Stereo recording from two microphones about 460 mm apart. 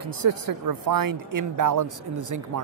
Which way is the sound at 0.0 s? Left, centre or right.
Right.